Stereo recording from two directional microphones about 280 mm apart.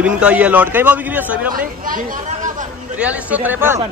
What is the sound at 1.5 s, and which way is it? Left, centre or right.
Speech, right.